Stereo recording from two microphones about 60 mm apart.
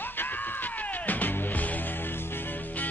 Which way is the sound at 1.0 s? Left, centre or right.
Left.